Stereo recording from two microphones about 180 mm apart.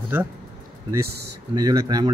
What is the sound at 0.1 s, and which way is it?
Speech, 10° right (ahead or behind).